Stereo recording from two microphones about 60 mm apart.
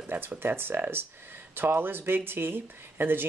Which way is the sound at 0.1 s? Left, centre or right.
Right.